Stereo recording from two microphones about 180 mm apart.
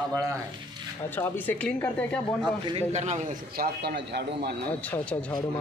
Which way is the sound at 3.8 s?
65° right (ahead or behind).